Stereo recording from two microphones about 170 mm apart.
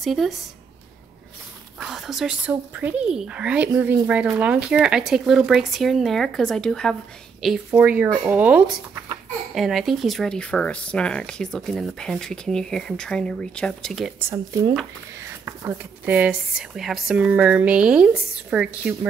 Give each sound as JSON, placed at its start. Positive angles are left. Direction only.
{"t": 0.0, "sound": "speech", "side_deg": 0}
{"t": 1.8, "sound": "speech", "side_deg": 0}
{"t": 14.3, "sound": "speech", "side_deg": -20}
{"t": 16.2, "sound": "speech", "side_deg": -5}